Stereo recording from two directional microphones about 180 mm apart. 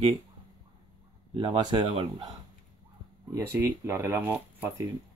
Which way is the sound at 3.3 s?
15° right (ahead or behind).